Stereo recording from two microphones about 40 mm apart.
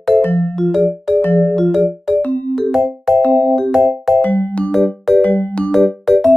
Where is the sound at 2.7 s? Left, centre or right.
Centre.